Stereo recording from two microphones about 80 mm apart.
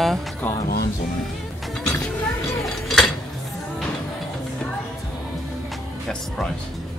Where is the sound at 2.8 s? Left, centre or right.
Centre.